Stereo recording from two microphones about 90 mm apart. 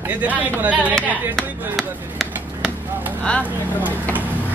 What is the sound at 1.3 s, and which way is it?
Chop, centre (ahead or behind).